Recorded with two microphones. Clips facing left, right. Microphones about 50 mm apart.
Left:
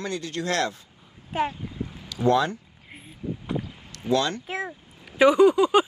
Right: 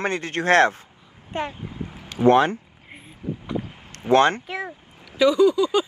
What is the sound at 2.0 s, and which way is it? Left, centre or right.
Speech, right.